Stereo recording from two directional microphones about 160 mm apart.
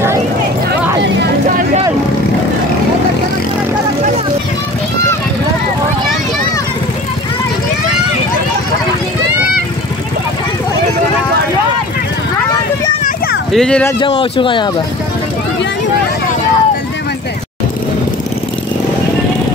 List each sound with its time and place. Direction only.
13.5 s speech: 5° left (ahead or behind)
13.9 s speech: 30° left (ahead or behind)